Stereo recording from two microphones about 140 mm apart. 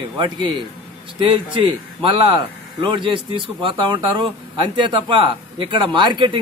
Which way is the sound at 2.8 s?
35° right (ahead or behind).